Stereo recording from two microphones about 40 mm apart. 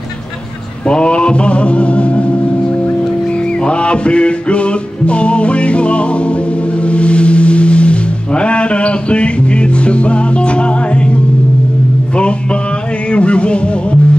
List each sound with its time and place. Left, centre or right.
0.8 s music: left
3.6 s music: left
13.1 s music: left